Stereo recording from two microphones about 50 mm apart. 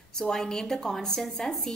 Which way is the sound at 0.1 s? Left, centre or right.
Centre.